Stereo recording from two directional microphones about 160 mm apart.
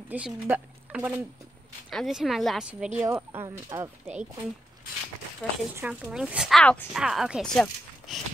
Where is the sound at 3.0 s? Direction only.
15° right (ahead or behind).